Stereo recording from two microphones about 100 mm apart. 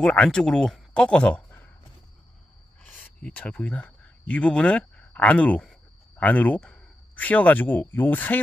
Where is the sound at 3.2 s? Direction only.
15° left (ahead or behind).